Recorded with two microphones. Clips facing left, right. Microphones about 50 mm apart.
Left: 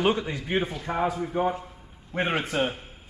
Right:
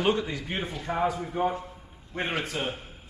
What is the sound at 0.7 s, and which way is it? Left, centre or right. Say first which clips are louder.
Speech: left 1 dB; centre.